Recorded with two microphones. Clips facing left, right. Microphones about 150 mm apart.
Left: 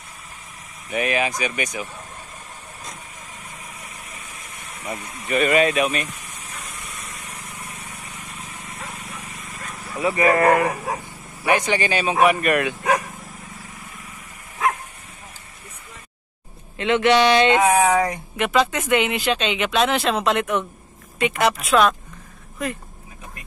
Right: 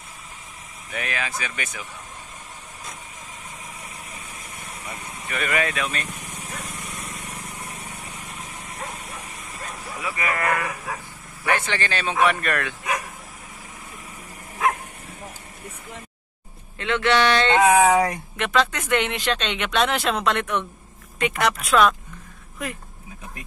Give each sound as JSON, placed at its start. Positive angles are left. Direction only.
{"t": 0.9, "sound": "speech", "side_deg": 20}
{"t": 4.8, "sound": "speech", "side_deg": 25}
{"t": 7.0, "sound": "vehicle", "side_deg": -30}
{"t": 9.9, "sound": "speech", "side_deg": 35}
{"t": 11.4, "sound": "speech", "side_deg": 15}
{"t": 16.7, "sound": "speech", "side_deg": 20}
{"t": 17.8, "sound": "speech", "side_deg": -10}
{"t": 18.3, "sound": "speech", "side_deg": 10}